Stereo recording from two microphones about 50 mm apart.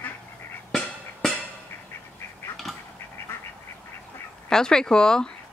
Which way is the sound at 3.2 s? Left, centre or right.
Left.